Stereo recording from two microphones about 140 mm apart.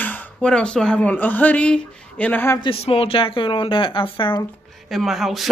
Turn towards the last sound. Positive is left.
turn(degrees=0)  # may be behind; listen again after turning